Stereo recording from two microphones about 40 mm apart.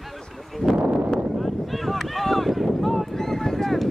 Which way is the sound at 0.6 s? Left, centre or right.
Left.